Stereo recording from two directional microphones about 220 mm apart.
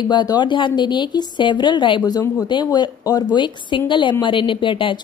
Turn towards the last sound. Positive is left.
turn(degrees=20)  # may be behind; listen again after turning